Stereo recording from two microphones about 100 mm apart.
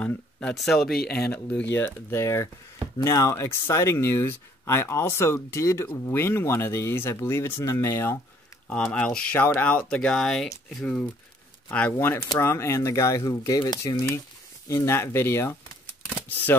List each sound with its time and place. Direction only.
0.0 s speech: 10° left (ahead or behind)
0.6 s speech: centre (ahead or behind)
1.1 s speech: 15° left (ahead or behind)
8.9 s speech: 10° left (ahead or behind)
11.7 s speech: 15° left (ahead or behind)
12.4 s speech: 25° left (ahead or behind)
14.7 s speech: 25° left (ahead or behind)